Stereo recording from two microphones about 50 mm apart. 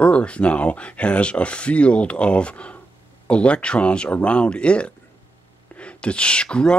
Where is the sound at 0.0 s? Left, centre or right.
Left.